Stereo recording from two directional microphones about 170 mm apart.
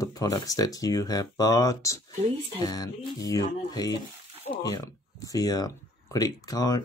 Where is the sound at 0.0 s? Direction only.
20° left (ahead or behind).